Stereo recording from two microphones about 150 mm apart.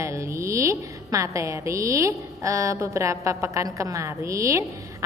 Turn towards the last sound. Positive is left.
turn(degrees=-20)  # may be behind; listen again after turning